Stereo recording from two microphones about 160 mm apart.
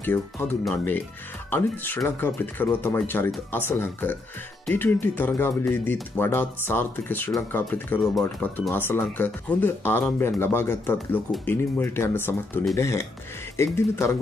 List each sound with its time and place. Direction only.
0.0 s speech: 10° left (ahead or behind)